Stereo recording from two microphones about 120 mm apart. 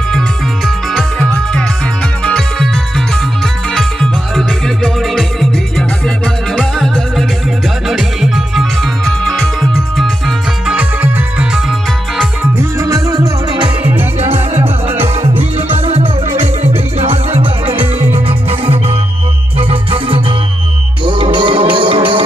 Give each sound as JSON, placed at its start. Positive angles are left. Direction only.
{"t": 0.7, "sound": "music", "side_deg": 5}
{"t": 3.7, "sound": "music", "side_deg": 5}
{"t": 10.8, "sound": "music", "side_deg": -10}
{"t": 12.7, "sound": "music", "side_deg": -25}
{"t": 14.2, "sound": "music", "side_deg": -60}